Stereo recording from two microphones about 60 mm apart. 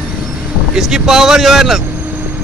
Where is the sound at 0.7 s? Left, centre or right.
Centre.